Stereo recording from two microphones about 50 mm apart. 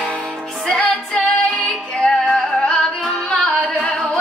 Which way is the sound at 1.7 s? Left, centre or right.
Centre.